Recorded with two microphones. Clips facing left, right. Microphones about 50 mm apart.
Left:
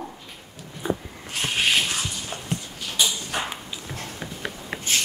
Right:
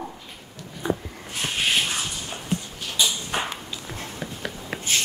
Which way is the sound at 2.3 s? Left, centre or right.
Centre.